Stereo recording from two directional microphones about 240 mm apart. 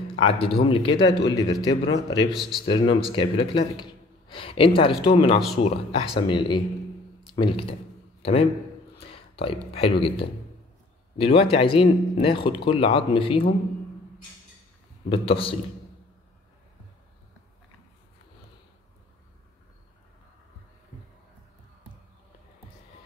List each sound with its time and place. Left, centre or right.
0.2 s speech: left
2.3 s speech: centre
2.6 s a man's voice: left
9.0 s a sound: left
9.7 s speech: left
15.0 s speech: left